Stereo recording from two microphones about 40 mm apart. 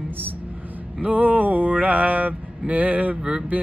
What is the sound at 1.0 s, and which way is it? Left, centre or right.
Mantra, right.